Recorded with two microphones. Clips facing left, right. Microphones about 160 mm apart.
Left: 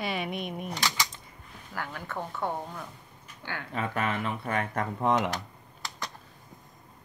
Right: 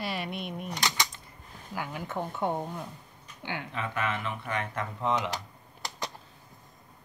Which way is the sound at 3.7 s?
40° left (ahead or behind).